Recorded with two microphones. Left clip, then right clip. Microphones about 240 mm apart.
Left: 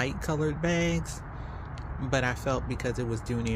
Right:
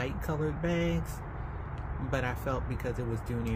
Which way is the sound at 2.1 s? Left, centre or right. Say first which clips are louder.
Left 5 dB; left.